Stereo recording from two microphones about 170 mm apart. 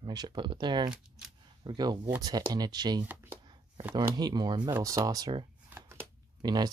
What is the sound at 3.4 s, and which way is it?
Chopping, 30° right (ahead or behind).